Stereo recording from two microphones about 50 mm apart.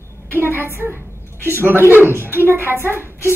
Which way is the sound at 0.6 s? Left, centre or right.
Right.